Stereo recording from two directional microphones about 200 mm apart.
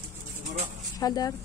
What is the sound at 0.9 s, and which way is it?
Speech, 20° left (ahead or behind).